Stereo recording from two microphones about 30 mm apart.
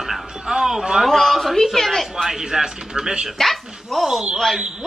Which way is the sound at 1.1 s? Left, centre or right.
Centre.